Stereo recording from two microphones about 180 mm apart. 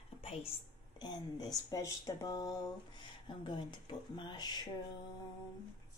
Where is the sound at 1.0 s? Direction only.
20° left (ahead or behind).